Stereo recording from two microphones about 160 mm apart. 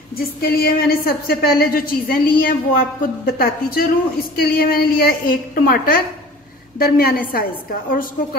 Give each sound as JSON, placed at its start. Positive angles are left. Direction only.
{"t": 0.2, "sound": "a woman's voice", "side_deg": 70}